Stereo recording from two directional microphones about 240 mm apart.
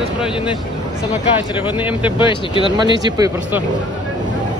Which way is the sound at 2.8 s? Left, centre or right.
Centre.